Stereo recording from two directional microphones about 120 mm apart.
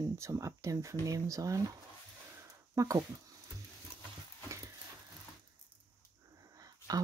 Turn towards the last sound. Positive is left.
turn(degrees=-30)  # may be behind; listen again after turning